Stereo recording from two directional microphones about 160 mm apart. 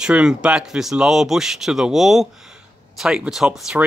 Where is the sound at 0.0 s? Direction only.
5° right (ahead or behind).